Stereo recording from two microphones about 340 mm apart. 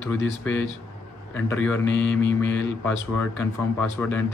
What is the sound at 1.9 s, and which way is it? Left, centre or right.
Mantra, left.